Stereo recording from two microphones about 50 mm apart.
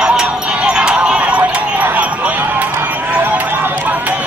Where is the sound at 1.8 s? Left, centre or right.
Right.